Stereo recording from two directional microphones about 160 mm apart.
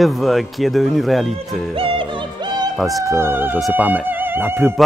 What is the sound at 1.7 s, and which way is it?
Music, 35° right (ahead or behind).